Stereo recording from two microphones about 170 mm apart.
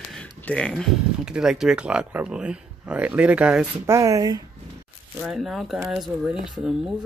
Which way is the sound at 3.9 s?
20° right (ahead or behind).